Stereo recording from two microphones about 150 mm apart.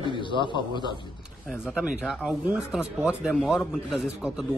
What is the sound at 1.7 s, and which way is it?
A man's voice, 5° right (ahead or behind).